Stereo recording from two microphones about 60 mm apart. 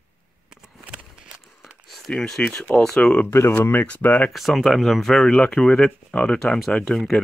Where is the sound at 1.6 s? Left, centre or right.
Centre.